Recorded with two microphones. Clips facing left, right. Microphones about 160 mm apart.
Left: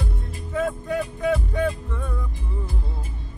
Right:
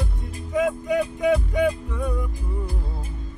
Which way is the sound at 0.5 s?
15° right (ahead or behind).